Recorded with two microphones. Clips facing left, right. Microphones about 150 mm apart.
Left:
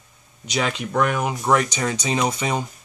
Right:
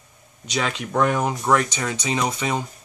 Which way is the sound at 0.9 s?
25° right (ahead or behind).